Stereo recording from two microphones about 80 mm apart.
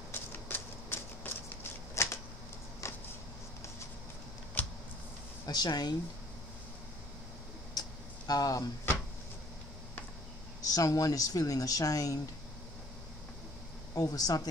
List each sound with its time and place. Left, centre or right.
0.1 s a sound: left
4.6 s a sound: centre
5.5 s speech: left
7.8 s tick-tock: left
8.3 s speech: left
10.7 s speech: left
13.9 s speech: left